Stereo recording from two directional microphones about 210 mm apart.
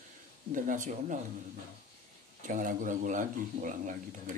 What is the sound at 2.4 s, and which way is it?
Speech, 40° right (ahead or behind).